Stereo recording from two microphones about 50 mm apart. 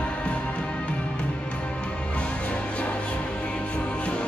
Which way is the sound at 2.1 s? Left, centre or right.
Left.